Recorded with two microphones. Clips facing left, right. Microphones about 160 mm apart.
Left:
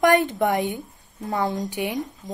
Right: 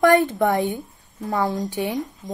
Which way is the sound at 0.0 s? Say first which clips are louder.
Right 2 dB; 15° left (ahead or behind).